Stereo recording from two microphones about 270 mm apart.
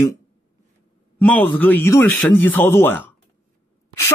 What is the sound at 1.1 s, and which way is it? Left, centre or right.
Speech, centre.